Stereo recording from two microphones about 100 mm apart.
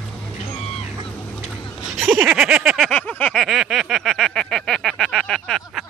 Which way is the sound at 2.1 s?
15° right (ahead or behind).